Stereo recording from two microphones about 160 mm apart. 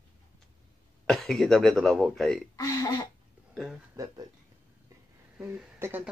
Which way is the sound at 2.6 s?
20° left (ahead or behind).